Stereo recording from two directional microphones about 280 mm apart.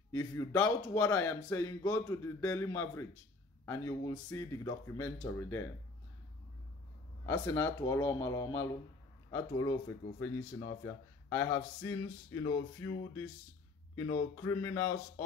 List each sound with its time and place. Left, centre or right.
0.1 s speech: centre
7.2 s speech: centre
13.9 s speech: centre